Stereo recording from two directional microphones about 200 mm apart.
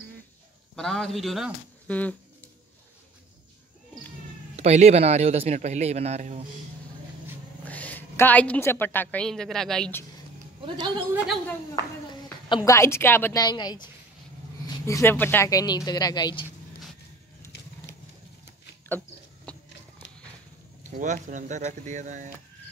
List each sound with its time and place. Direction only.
0.7 s speech: 5° left (ahead or behind)
4.6 s speech: 35° right (ahead or behind)
7.6 s a woman's voice: 10° left (ahead or behind)
12.1 s a woman's voice: 20° left (ahead or behind)
18.9 s a sound: 10° left (ahead or behind)
20.8 s speech: 40° right (ahead or behind)